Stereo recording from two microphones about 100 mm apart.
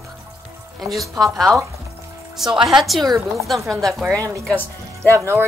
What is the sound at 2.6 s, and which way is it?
A woman's voice, 5° right (ahead or behind).